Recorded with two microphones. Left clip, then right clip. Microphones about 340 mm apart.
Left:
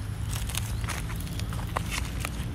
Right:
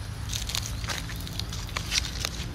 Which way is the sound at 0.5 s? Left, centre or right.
Centre.